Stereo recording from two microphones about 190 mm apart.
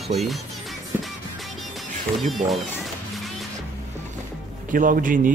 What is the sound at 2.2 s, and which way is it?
Speech, centre (ahead or behind).